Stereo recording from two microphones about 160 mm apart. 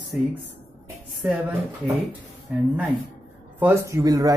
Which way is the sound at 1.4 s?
10° right (ahead or behind).